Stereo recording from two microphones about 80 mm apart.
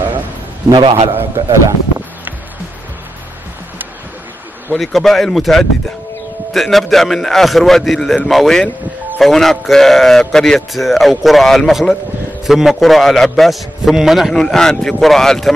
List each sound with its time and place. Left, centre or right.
1.1 s a man's voice: right
4.7 s a man's voice: centre